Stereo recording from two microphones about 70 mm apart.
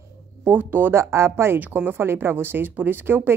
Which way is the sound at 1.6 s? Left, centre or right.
Right.